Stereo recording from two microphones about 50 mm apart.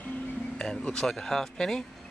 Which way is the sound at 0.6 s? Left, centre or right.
Centre.